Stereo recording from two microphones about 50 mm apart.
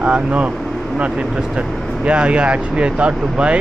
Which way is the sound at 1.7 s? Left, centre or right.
Centre.